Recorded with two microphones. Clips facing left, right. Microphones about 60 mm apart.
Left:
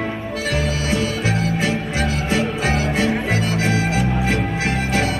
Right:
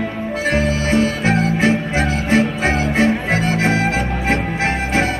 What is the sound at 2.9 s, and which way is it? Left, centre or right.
Music, right.